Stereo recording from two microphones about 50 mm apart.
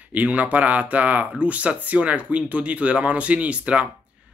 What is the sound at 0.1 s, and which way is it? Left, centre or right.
Speech, right.